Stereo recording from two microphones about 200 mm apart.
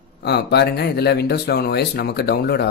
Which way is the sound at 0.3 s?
55° left (ahead or behind).